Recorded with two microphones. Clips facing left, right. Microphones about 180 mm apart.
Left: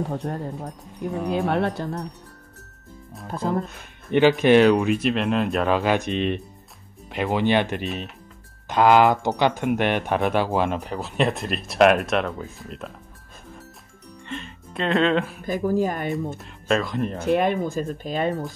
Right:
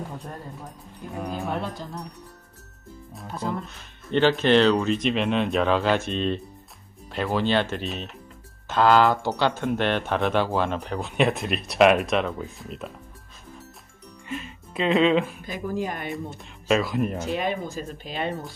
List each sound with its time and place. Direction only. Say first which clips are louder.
0.1 s speech: left 9 dB; 65° left (ahead or behind)
3.3 s speech: left 5 dB; 45° left (ahead or behind)
4.4 s speech: left 3 dB; 10° left (ahead or behind)
7.8 s speech: left 2 dB; centre (ahead or behind)
8.6 s speech: left 2 dB; 15° left (ahead or behind); by 12.9 s centre (ahead or behind)
14.2 s speech: right 1 dB; 5° right (ahead or behind)
15.4 s speech: left 7 dB; 45° left (ahead or behind)
16.3 s speech: even; 5° right (ahead or behind)
17.2 s speech: left 6 dB; 55° left (ahead or behind)